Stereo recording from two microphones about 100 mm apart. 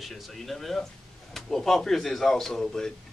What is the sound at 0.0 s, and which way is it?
Speech, centre (ahead or behind).